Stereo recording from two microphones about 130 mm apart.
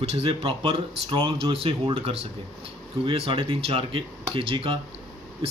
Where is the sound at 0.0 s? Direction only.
45° right (ahead or behind).